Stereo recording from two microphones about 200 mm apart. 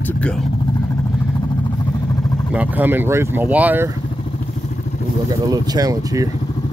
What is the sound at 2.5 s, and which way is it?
Speech, 10° right (ahead or behind).